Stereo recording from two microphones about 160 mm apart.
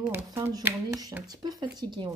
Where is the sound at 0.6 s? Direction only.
15° right (ahead or behind).